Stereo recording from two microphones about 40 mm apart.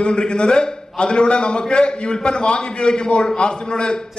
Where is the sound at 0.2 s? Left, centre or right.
Left.